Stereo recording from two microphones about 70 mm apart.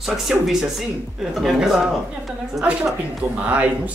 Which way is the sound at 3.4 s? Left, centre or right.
Centre.